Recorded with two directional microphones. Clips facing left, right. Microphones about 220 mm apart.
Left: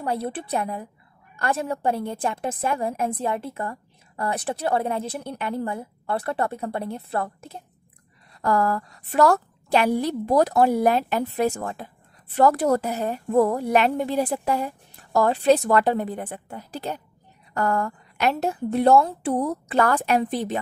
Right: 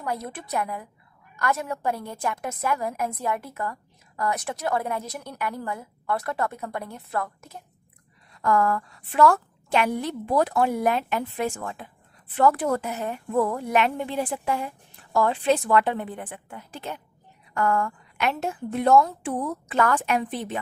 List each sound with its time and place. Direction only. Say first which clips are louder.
0.0 s a woman's voice: left 4 dB; 30° left (ahead or behind)